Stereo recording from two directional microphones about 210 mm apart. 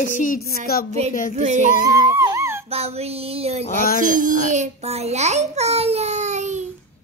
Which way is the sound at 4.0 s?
40° right (ahead or behind).